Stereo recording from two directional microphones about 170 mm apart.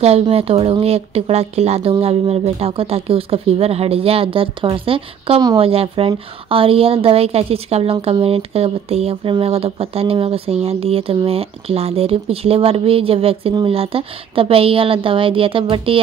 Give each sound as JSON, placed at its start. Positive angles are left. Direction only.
{"t": 0.0, "sound": "a woman's voice", "side_deg": -35}